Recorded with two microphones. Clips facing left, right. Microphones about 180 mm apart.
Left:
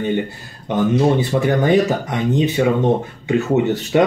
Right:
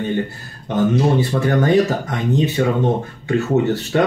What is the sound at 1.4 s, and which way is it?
Speech, 15° left (ahead or behind).